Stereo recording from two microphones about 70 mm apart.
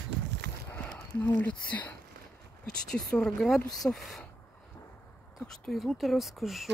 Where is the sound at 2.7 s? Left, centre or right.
Centre.